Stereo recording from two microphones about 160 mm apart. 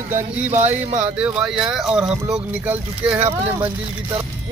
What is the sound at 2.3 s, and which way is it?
Music, 10° right (ahead or behind).